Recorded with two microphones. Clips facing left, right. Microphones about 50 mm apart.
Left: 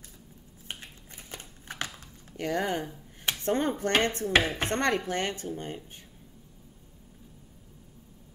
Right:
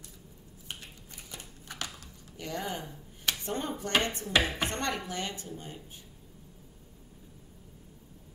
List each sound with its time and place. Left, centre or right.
0.7 s typewriter: left
2.3 s speech: left